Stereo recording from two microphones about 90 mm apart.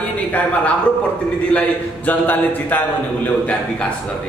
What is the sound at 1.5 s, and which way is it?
A man's voice, 15° left (ahead or behind).